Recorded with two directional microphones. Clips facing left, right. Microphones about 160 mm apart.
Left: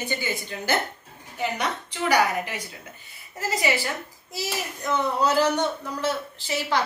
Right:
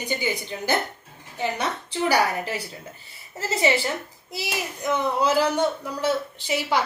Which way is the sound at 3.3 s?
30° right (ahead or behind).